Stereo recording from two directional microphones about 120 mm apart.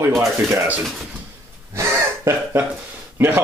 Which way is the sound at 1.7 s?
25° right (ahead or behind).